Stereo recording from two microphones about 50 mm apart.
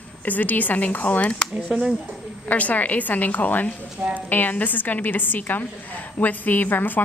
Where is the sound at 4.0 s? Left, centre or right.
Right.